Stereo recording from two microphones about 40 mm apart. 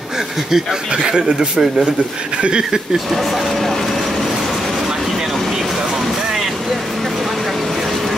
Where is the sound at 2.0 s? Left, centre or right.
Right.